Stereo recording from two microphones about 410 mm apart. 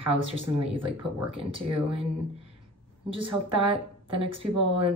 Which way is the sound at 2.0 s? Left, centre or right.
Centre.